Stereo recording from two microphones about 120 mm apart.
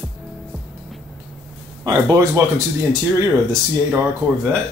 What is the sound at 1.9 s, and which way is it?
Speech, 30° right (ahead or behind).